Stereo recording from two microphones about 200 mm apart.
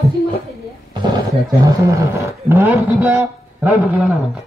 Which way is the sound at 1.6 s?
15° right (ahead or behind).